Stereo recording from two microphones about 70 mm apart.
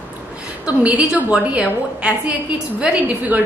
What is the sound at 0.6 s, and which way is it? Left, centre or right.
A woman's voice, centre.